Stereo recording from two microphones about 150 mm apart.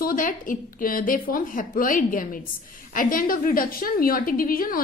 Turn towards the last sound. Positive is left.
turn(degrees=70)  # may be behind; listen again after turning